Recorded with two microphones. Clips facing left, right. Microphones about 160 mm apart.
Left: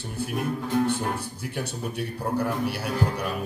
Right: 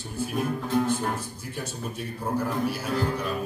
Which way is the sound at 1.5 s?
65° left (ahead or behind).